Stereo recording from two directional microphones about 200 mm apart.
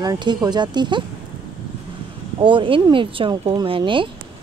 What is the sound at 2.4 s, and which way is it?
Speech, 25° right (ahead or behind).